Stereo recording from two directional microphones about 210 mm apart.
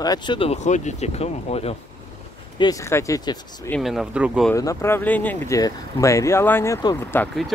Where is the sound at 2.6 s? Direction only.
15° left (ahead or behind).